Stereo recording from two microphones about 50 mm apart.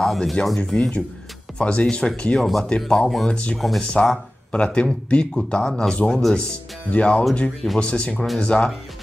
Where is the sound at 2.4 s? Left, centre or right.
Centre.